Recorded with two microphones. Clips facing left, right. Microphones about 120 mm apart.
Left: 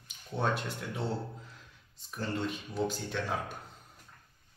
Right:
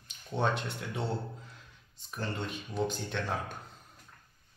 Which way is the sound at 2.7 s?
5° left (ahead or behind).